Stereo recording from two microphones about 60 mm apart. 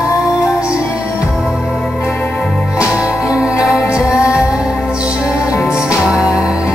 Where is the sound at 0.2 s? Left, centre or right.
Centre.